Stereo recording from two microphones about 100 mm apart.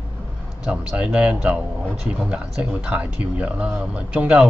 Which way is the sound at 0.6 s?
10° right (ahead or behind).